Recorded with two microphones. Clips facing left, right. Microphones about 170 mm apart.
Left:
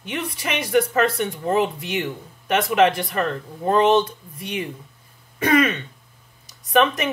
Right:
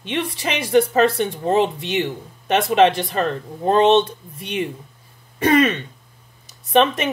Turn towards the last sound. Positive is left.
turn(degrees=-25)  # may be behind; listen again after turning